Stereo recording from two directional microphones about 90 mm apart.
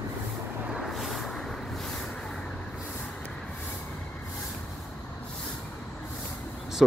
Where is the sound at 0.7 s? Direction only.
5° right (ahead or behind).